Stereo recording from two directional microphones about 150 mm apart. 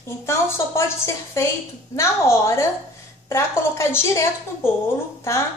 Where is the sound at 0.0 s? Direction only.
20° left (ahead or behind).